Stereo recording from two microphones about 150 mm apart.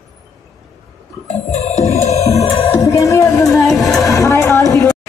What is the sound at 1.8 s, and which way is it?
Music, 45° left (ahead or behind).